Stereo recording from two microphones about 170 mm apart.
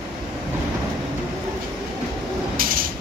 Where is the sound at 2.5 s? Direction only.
55° right (ahead or behind).